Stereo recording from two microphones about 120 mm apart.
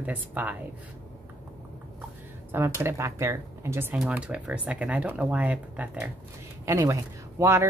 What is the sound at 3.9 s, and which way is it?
Speech, 10° right (ahead or behind).